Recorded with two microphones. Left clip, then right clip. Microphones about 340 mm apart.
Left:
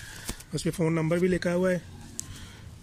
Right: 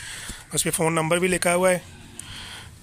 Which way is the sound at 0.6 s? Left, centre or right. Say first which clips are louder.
Right 5 dB; centre.